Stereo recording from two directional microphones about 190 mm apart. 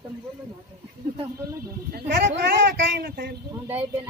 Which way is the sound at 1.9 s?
60° right (ahead or behind).